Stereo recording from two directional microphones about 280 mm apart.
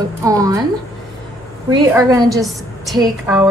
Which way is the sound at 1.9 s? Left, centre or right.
Centre.